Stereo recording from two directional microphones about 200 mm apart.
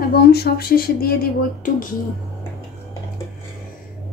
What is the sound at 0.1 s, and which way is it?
Speech, 50° left (ahead or behind).